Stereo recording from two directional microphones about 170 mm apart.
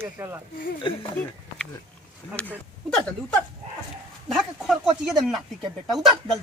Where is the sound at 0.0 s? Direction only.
15° right (ahead or behind).